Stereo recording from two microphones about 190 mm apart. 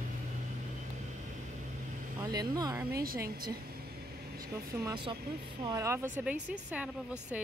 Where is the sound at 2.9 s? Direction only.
50° right (ahead or behind).